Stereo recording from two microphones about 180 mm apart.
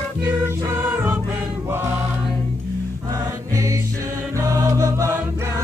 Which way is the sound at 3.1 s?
15° right (ahead or behind).